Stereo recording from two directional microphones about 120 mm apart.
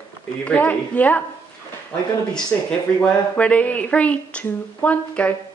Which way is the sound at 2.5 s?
20° left (ahead or behind).